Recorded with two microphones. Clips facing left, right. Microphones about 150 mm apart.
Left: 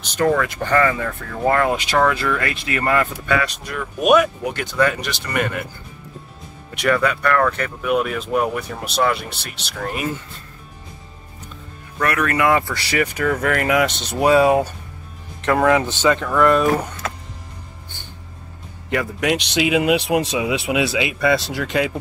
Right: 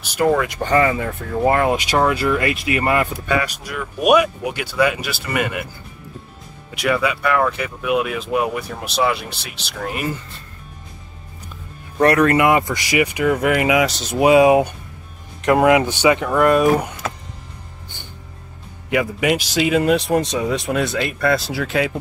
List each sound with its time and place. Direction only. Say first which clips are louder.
0.0 s speech: right 1 dB; 10° right (ahead or behind)
3.4 s speech: even; 5° right (ahead or behind)
6.7 s speech: left 1 dB; 5° right (ahead or behind)
12.0 s speech: right 7 dB; 30° right (ahead or behind)
12.4 s speech: right 2 dB; 20° right (ahead or behind)
18.9 s speech: right 2 dB; 5° right (ahead or behind)